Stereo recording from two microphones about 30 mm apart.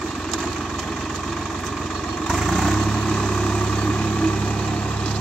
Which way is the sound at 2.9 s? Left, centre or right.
Left.